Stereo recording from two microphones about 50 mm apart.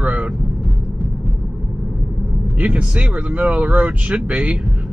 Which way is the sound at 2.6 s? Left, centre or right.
Right.